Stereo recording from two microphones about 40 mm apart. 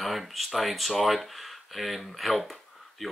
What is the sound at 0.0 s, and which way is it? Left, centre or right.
Speech, centre.